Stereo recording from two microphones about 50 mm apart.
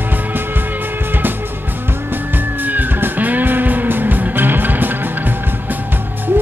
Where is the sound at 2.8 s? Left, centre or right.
Right.